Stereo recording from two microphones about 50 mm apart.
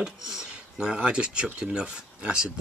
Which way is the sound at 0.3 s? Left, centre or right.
Centre.